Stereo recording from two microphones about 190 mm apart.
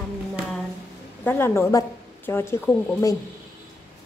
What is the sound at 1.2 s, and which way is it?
Speech, 10° left (ahead or behind).